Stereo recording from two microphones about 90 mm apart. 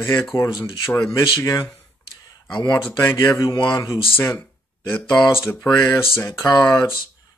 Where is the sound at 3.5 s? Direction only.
55° left (ahead or behind).